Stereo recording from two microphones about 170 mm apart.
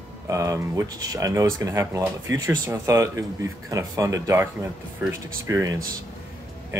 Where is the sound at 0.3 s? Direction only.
20° right (ahead or behind).